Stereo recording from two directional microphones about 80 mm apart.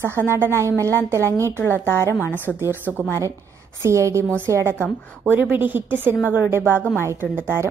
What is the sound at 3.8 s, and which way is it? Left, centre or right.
A woman's voice, right.